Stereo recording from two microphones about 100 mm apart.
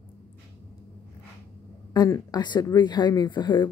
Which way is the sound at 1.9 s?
40° left (ahead or behind).